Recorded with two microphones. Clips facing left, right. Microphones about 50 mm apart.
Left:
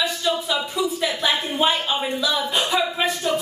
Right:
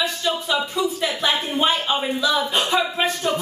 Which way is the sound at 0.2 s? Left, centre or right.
Centre.